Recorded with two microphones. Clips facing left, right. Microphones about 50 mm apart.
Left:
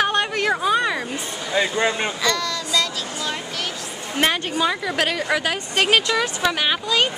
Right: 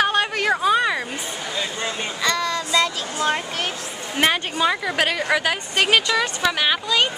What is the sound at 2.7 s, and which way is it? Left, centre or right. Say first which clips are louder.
Speech: right 2 dB; right.